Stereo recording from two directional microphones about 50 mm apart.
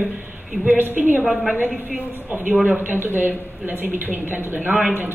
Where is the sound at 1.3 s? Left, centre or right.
Centre.